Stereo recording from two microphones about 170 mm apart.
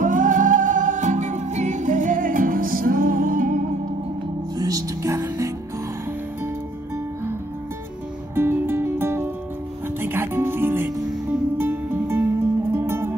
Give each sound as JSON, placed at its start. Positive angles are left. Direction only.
{"t": 0.0, "sound": "music", "side_deg": -50}
{"t": 4.6, "sound": "music", "side_deg": -20}
{"t": 8.4, "sound": "music", "side_deg": -15}